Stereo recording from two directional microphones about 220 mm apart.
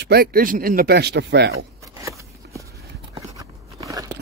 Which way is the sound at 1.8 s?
15° right (ahead or behind).